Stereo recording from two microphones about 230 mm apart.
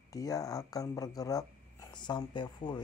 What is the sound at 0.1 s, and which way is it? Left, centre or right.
Speech, centre.